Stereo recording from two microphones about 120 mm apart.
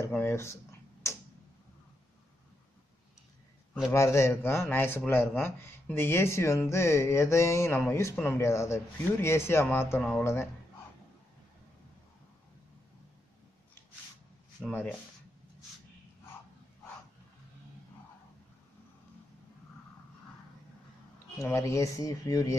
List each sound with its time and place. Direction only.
0.2 s speech: 20° left (ahead or behind)
3.9 s speech: 25° left (ahead or behind)
14.7 s speech: 15° left (ahead or behind)
21.4 s speech: 25° left (ahead or behind)